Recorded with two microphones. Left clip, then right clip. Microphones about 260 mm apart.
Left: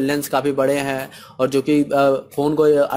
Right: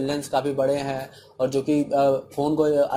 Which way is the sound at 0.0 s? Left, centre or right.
Left.